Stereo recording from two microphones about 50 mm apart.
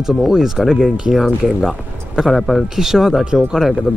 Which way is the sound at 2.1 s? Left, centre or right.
Centre.